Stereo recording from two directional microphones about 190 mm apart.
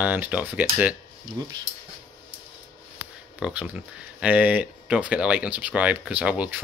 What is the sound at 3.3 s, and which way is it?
Speech, 5° right (ahead or behind).